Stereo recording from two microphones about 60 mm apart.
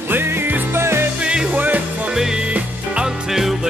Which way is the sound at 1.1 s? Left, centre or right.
Centre.